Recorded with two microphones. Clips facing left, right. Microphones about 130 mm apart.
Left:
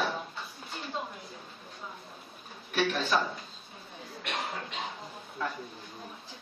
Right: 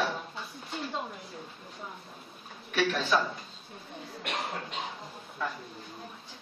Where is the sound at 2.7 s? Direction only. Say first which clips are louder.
Right 1 dB; centre (ahead or behind).